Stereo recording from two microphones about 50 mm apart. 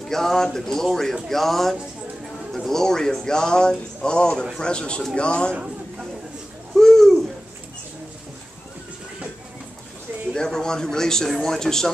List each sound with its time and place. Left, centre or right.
0.1 s a man's voice: centre
6.7 s hoot: centre
10.3 s speech: centre